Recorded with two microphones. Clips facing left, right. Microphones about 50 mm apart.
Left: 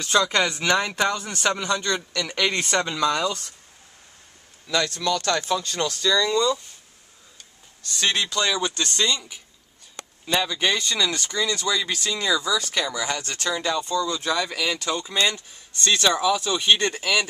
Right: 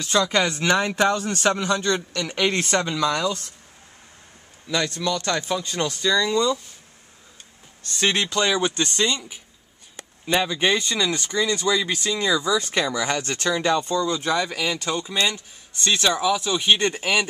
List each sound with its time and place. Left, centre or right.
0.0 s a man's voice: centre
1.1 s a man's voice: centre
4.6 s speech: right
7.8 s speech: right